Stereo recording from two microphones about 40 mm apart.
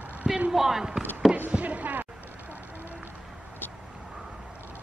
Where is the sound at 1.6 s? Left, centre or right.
Right.